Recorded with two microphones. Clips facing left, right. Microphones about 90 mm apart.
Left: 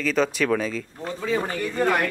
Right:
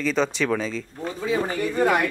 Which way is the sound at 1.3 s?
15° right (ahead or behind).